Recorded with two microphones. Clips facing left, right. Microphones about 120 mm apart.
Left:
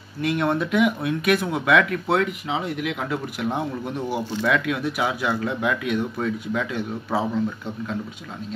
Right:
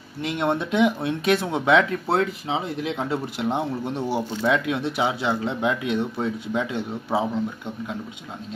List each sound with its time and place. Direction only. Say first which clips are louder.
0.2 s speech: left 2 dB; 20° right (ahead or behind)